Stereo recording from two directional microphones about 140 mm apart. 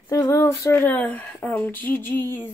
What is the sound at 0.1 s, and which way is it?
Speech, 20° left (ahead or behind).